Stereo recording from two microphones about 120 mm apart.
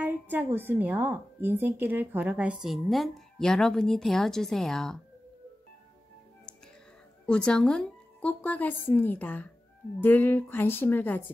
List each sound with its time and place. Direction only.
0.0 s speech: 15° right (ahead or behind); by 4.9 s 5° left (ahead or behind)
7.2 s speech: 5° left (ahead or behind)